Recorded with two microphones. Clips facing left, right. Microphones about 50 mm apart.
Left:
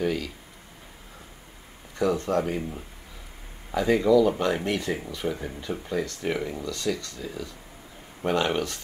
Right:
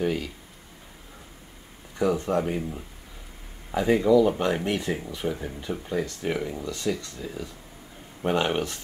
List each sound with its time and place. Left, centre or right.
0.0 s speech: centre
2.0 s speech: centre
3.7 s speech: centre
5.3 s speech: centre
6.6 s speech: right